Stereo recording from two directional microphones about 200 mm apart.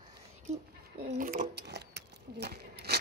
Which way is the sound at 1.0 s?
40° right (ahead or behind).